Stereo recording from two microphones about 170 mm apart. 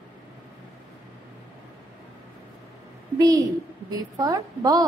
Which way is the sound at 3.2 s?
20° right (ahead or behind).